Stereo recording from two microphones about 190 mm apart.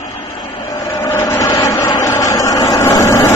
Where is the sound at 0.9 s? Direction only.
15° left (ahead or behind).